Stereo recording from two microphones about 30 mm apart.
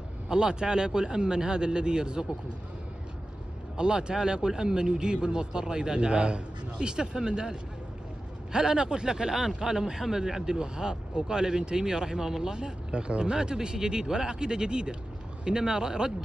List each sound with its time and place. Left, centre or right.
0.3 s a man's voice: right
3.7 s a man's voice: right
12.5 s a man's voice: right